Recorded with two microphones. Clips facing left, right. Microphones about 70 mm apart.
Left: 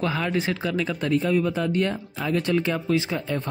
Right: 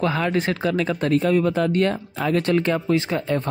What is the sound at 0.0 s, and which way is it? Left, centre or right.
Speech, right.